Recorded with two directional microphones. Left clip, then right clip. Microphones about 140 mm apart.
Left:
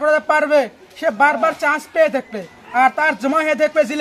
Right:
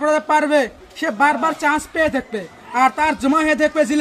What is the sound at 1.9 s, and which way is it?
A man's voice, 30° left (ahead or behind).